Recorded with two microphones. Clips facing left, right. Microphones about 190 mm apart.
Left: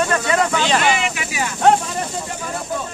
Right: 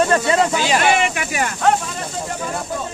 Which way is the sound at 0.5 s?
10° right (ahead or behind).